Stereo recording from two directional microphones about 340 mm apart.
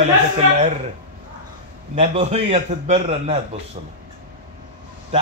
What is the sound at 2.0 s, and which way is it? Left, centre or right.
A man's voice, centre.